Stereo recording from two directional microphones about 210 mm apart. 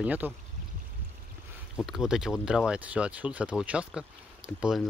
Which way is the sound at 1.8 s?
Centre (ahead or behind).